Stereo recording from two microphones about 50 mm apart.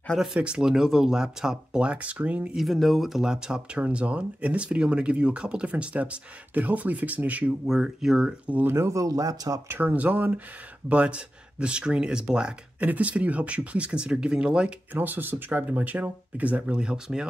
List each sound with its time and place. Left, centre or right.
0.4 s speech: centre
2.5 s speech: centre; by 7.5 s right
7.6 s speech: centre
8.3 s speech: right
8.6 s speech: right
9.8 s speech: right; by 12.5 s centre
12.8 s speech: right
15.0 s speech: right; by 17.3 s centre